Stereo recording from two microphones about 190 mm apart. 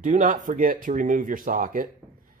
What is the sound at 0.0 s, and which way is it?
Speech, 40° right (ahead or behind).